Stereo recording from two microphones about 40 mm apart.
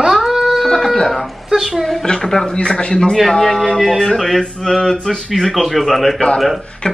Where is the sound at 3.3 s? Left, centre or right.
Centre.